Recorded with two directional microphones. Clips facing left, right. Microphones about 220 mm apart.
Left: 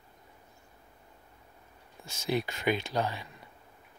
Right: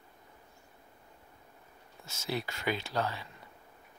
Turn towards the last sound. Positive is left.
turn(degrees=15)  # may be behind; listen again after turning